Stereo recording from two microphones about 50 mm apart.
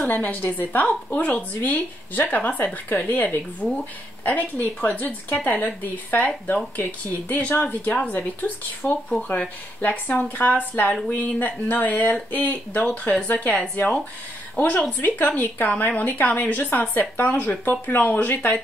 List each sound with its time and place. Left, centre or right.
0.1 s speech: left
12.8 s speech: left